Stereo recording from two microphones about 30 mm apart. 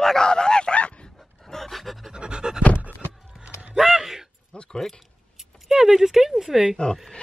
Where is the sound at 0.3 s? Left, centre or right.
Left.